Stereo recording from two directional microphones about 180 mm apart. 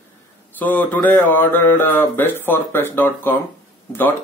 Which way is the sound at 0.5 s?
10° left (ahead or behind).